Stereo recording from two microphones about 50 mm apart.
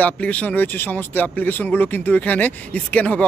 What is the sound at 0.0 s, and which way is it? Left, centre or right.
Speech, left.